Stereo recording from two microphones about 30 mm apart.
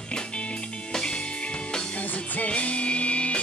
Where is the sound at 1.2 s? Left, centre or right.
Left.